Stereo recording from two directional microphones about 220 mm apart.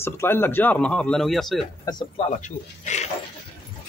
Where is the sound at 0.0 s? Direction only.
10° left (ahead or behind).